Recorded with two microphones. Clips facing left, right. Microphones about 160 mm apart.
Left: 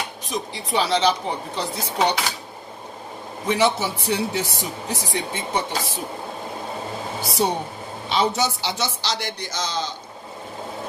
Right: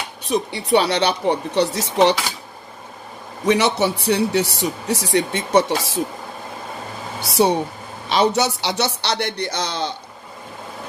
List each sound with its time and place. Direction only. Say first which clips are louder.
0.2 s speech: right 7 dB; 70° right (ahead or behind); by 2.1 s 85° right
3.4 s speech: right 3 dB; 75° right (ahead or behind)
7.4 s a man's voice: right 7 dB; 70° right (ahead or behind)